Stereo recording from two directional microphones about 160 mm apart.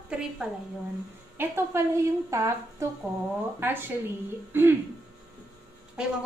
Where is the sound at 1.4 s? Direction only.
15° right (ahead or behind).